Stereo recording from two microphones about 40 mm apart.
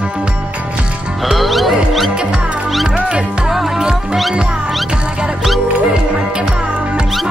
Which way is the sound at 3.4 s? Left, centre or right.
Centre.